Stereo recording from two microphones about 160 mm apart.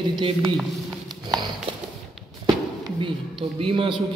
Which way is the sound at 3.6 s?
30° right (ahead or behind).